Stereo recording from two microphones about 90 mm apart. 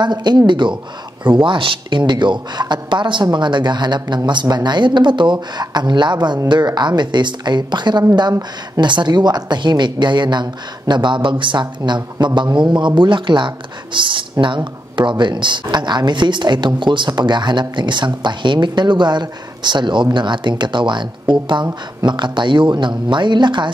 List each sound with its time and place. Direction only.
0.0 s a woman's voice: 55° right (ahead or behind)